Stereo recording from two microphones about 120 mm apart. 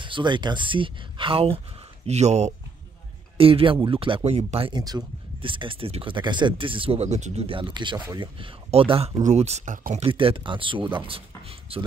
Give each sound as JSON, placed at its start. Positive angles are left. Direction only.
{"t": 0.0, "sound": "speech", "side_deg": -40}
{"t": 2.0, "sound": "speech", "side_deg": -65}
{"t": 3.3, "sound": "speech", "side_deg": -50}
{"t": 4.7, "sound": "speech", "side_deg": -35}
{"t": 7.4, "sound": "speech", "side_deg": -45}
{"t": 10.0, "sound": "speech", "side_deg": -50}
{"t": 11.1, "sound": "a sound", "side_deg": -50}